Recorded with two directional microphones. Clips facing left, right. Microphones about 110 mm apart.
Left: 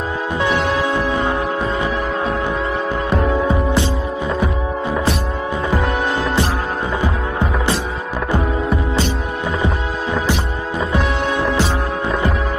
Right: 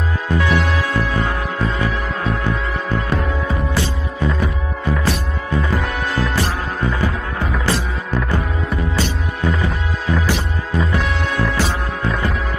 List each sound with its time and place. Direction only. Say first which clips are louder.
0.8 s music: left 2 dB; 20° left (ahead or behind)
3.4 s music: left 4 dB; 25° left (ahead or behind)
7.0 s music: left 2 dB; 20° left (ahead or behind)
11.3 s music: left 1 dB; 20° left (ahead or behind)